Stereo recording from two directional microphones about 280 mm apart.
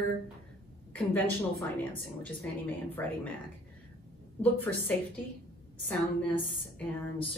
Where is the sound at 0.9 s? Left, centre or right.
Centre.